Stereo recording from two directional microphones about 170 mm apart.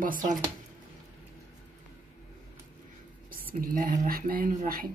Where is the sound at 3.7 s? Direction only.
50° right (ahead or behind).